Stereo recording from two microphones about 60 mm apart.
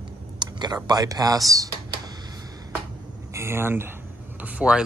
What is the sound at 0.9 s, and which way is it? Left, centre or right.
Speech, right.